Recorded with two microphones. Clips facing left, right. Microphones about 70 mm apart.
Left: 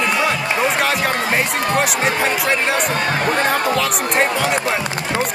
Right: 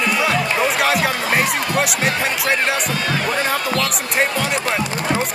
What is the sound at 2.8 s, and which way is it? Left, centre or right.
Speech, left.